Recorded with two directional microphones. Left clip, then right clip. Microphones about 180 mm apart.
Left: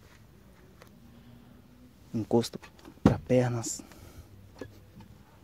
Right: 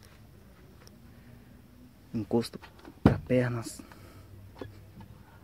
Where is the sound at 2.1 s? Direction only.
20° left (ahead or behind).